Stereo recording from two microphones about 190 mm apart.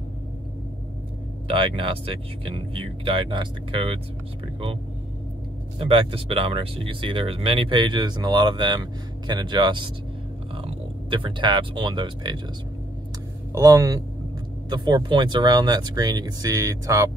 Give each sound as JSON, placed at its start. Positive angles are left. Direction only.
{"t": 1.5, "sound": "speech", "side_deg": -30}
{"t": 5.8, "sound": "speech", "side_deg": -30}
{"t": 13.5, "sound": "speech", "side_deg": -15}